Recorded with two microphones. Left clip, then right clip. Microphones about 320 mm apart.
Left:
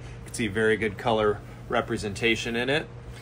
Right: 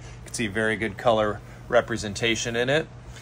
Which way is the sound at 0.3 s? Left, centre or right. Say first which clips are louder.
Left 1 dB; right.